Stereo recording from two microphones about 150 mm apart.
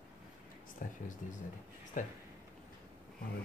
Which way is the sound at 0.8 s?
60° left (ahead or behind).